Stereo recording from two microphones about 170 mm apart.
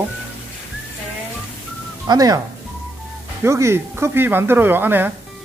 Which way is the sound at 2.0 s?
20° right (ahead or behind).